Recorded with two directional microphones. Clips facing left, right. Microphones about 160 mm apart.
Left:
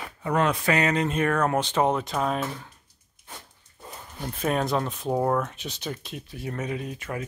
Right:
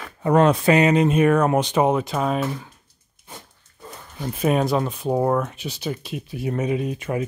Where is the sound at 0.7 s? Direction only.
20° right (ahead or behind).